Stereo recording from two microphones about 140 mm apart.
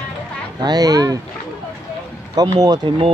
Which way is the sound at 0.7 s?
25° right (ahead or behind).